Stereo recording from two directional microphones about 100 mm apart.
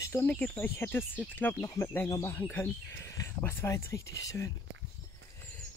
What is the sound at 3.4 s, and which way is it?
Speech, 25° left (ahead or behind).